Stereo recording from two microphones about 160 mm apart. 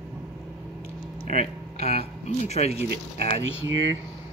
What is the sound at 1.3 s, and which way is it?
Speech, 40° left (ahead or behind).